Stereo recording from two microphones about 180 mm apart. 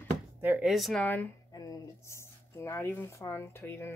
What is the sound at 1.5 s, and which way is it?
Speech, 20° left (ahead or behind).